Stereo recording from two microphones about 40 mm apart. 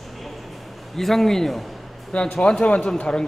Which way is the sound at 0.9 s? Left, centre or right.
Centre.